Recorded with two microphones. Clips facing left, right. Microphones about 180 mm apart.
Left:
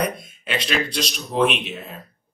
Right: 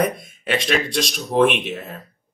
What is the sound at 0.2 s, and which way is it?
Speech, 50° right (ahead or behind).